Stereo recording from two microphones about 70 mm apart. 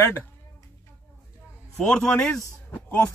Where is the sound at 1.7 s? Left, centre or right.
Centre.